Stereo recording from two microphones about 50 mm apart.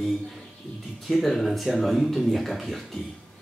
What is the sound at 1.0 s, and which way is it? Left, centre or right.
Speech, centre.